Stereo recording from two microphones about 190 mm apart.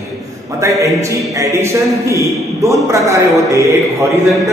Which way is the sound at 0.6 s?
15° right (ahead or behind).